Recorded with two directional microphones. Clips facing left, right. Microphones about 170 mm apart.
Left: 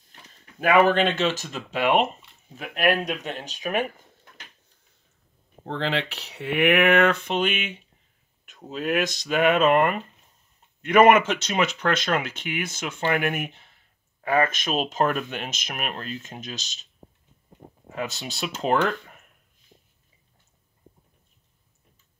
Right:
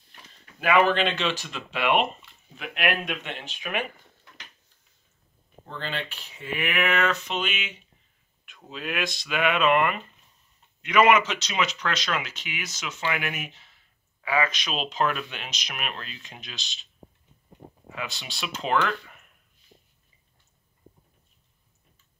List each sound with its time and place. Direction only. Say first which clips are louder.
0.6 s speech: left 3 dB; 45° left (ahead or behind)
5.7 s speech: left 7 dB; 90° left; by 7.8 s 55° left (ahead or behind)
8.5 s speech: left 7 dB; 40° left (ahead or behind)
17.8 s speech: left 5 dB; 45° left (ahead or behind)